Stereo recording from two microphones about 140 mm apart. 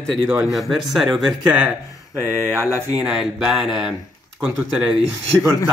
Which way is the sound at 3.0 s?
5° right (ahead or behind).